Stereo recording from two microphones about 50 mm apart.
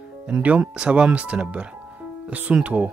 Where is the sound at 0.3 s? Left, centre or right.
Right.